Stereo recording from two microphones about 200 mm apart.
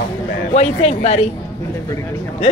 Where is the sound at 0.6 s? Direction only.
35° left (ahead or behind).